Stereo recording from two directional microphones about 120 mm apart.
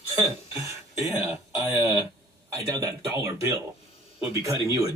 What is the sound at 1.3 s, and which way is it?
A man's voice, 25° right (ahead or behind).